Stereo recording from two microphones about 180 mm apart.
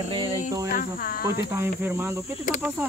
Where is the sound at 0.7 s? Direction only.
50° left (ahead or behind).